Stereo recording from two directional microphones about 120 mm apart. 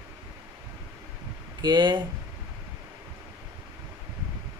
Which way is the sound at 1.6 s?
40° right (ahead or behind).